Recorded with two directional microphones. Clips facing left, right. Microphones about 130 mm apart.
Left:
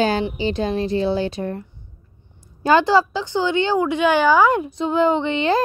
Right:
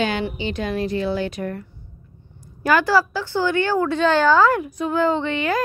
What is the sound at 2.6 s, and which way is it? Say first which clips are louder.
A woman's voice: left 2 dB; 25° left (ahead or behind).